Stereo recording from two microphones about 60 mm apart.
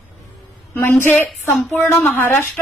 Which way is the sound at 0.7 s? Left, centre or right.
Left.